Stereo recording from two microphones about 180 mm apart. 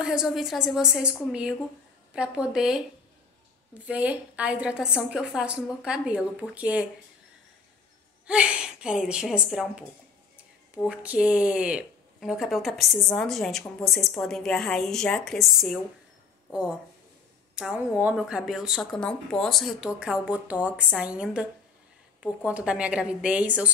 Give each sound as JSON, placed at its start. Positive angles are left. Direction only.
{"t": 0.0, "sound": "speech", "side_deg": -5}
{"t": 2.1, "sound": "speech", "side_deg": -5}
{"t": 3.8, "sound": "a woman's voice", "side_deg": -5}
{"t": 8.3, "sound": "speech", "side_deg": -5}
{"t": 17.6, "sound": "a woman's voice", "side_deg": -5}